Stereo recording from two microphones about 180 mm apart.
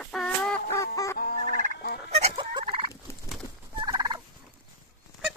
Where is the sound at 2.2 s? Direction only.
25° right (ahead or behind).